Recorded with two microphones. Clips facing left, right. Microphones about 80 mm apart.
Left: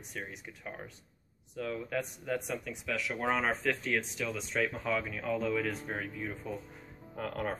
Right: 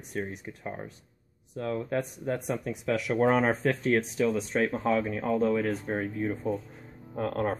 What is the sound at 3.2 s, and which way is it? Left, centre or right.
Speech, right.